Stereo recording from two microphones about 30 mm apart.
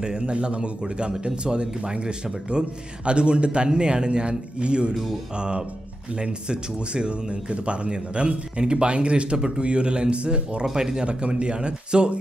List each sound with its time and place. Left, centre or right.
0.0 s speech: right
6.1 s speech: right
10.6 s speech: right